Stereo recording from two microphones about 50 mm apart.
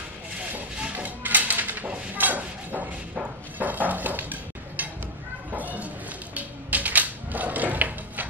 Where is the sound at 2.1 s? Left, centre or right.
Right.